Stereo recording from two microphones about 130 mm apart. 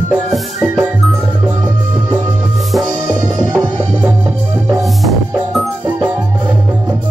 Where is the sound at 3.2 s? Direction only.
30° right (ahead or behind).